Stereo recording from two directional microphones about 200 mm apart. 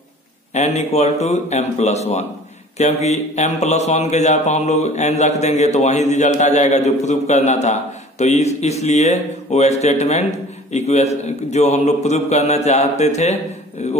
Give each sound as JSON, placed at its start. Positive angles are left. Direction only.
{"t": 0.6, "sound": "a man's voice", "side_deg": 35}